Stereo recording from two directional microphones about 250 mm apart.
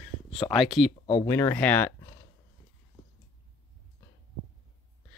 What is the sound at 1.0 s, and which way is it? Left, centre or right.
Speech, centre.